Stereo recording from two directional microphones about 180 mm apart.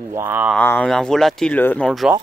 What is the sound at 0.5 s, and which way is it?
Speech, 10° left (ahead or behind).